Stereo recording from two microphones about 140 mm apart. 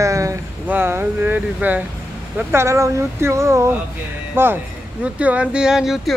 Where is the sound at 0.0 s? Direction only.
20° right (ahead or behind).